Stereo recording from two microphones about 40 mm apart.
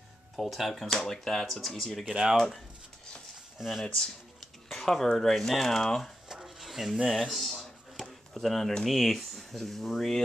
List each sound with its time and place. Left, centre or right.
0.4 s speech: centre
2.0 s speech: right
2.3 s speech: centre
3.5 s speech: centre
3.8 s speech: centre
6.2 s drawer open or close: centre
6.6 s a sound: centre
8.8 s speech: centre